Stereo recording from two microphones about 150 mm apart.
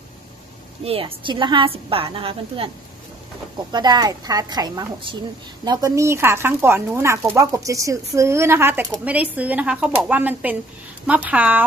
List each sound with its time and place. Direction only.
0.8 s a woman's voice: 40° right (ahead or behind)
3.7 s a woman's voice: 25° right (ahead or behind); by 11.6 s 10° right (ahead or behind)